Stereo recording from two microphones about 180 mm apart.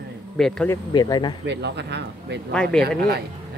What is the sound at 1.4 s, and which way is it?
Speech, 70° right (ahead or behind).